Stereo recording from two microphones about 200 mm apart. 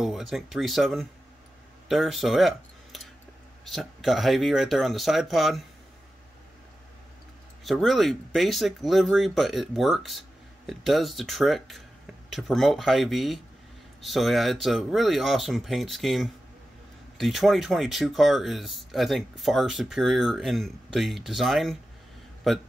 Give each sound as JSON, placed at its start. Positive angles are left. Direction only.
{"t": 0.0, "sound": "speech", "side_deg": 0}
{"t": 7.6, "sound": "speech", "side_deg": 0}